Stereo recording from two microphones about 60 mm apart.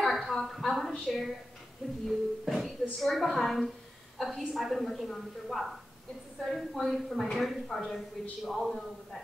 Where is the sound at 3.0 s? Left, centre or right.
Centre.